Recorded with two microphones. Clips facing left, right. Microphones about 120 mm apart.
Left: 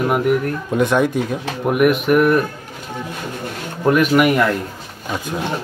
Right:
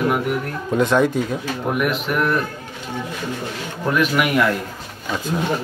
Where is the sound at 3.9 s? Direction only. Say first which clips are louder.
Left 4 dB; 45° left (ahead or behind).